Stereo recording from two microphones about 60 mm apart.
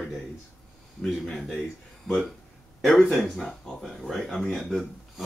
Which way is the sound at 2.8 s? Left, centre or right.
Centre.